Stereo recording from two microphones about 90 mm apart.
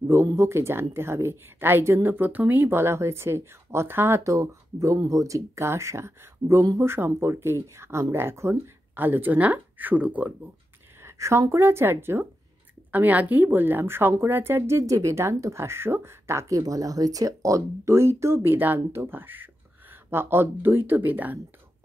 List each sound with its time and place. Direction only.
0.1 s speech: 30° right (ahead or behind)
11.0 s speech: 30° right (ahead or behind)